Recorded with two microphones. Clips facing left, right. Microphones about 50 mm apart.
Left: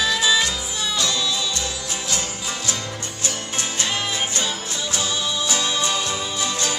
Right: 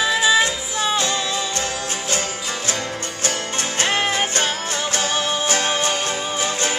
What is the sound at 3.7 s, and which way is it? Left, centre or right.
Music, right.